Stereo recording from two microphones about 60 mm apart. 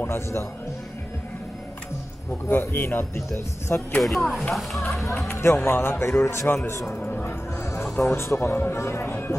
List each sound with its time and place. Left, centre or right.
0.0 s speech: left
2.6 s speech: left
4.0 s speech: centre
4.8 s speech: left
7.9 s speech: left